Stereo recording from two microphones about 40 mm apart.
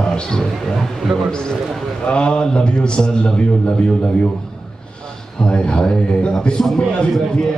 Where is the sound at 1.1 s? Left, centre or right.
Centre.